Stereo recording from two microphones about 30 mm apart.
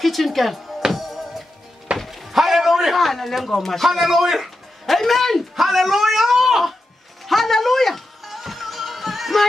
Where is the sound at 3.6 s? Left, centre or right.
Centre.